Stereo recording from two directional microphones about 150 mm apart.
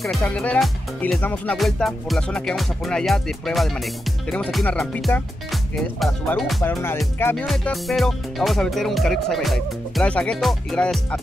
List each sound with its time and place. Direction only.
0.2 s speech: 10° left (ahead or behind)
6.6 s speech: 15° left (ahead or behind)
7.4 s speech: centre (ahead or behind)